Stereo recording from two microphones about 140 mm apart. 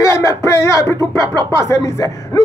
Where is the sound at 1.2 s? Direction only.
30° right (ahead or behind).